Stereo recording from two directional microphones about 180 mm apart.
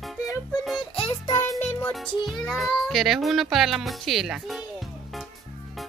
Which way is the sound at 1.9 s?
Centre (ahead or behind).